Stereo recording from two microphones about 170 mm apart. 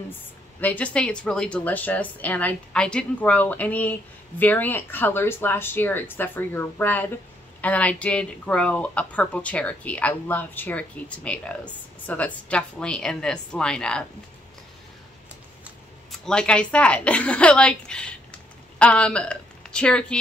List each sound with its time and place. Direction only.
0.6 s speech: 10° left (ahead or behind)
16.1 s a woman's voice: 5° left (ahead or behind)